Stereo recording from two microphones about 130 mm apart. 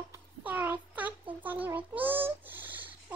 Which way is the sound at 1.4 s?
15° right (ahead or behind).